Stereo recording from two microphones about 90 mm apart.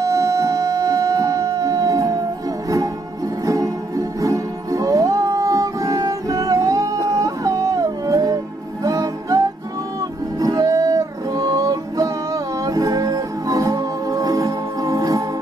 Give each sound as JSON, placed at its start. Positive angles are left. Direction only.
{"t": 0.0, "sound": "music", "side_deg": -35}
{"t": 3.4, "sound": "music", "side_deg": -40}
{"t": 7.2, "sound": "a sound", "side_deg": -40}
{"t": 8.8, "sound": "music", "side_deg": -40}
{"t": 10.4, "sound": "music", "side_deg": -40}